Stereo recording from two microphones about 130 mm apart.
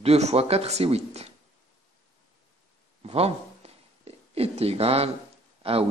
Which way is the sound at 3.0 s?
50° right (ahead or behind).